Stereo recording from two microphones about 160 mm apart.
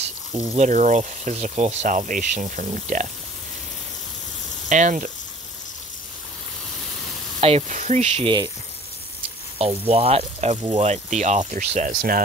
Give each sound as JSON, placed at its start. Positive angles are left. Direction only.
{"t": 0.3, "sound": "speech", "side_deg": -25}
{"t": 0.6, "sound": "speech", "side_deg": -50}
{"t": 4.6, "sound": "speech", "side_deg": -50}
{"t": 7.3, "sound": "speech", "side_deg": -40}
{"t": 9.6, "sound": "speech", "side_deg": -40}